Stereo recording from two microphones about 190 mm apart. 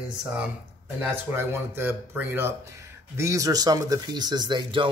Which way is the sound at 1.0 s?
10° right (ahead or behind).